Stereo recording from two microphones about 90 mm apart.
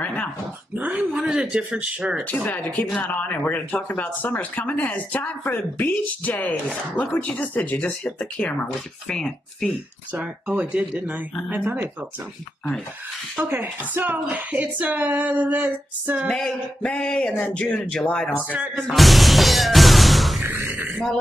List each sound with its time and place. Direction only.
0.0 s dog: 15° left (ahead or behind)
0.7 s dog: 15° right (ahead or behind)
1.2 s speech: 5° right (ahead or behind)
2.2 s speech: 20° left (ahead or behind)
10.1 s speech: 10° right (ahead or behind)
13.4 s speech: 20° right (ahead or behind)
16.3 s speech: 5° left (ahead or behind)
18.4 s speech: 15° right (ahead or behind)
18.8 s music: centre (ahead or behind)
20.4 s speech: 25° right (ahead or behind)